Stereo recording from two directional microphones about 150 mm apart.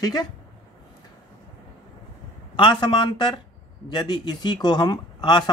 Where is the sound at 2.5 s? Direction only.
30° left (ahead or behind).